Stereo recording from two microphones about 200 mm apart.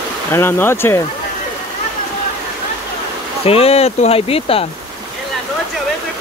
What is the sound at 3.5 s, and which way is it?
Speech, 30° left (ahead or behind).